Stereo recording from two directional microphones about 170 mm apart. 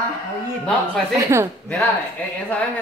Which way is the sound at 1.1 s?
20° right (ahead or behind).